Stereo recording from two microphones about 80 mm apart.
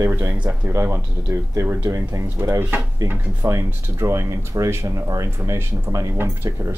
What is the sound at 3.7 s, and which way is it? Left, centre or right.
Speech, right.